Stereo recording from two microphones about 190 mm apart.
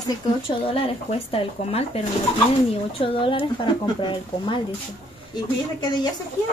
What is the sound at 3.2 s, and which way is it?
Speech, 25° left (ahead or behind).